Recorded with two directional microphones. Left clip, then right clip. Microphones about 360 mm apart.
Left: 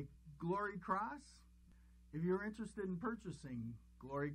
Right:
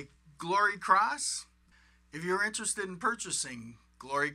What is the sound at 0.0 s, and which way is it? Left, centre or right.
Speech, centre.